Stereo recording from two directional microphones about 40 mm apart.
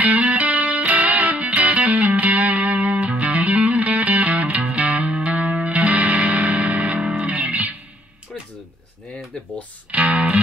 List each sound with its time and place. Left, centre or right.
0.0 s music: right
9.8 s music: right